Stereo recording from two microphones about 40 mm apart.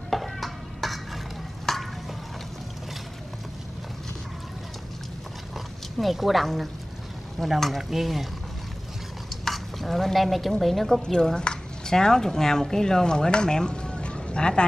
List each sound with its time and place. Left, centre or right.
0.1 s a sound: centre
5.9 s speech: centre
9.4 s dishes: centre
10.6 s speech: centre
11.0 s speech: centre